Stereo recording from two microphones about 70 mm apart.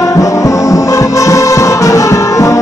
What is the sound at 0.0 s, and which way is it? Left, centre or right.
Music, left.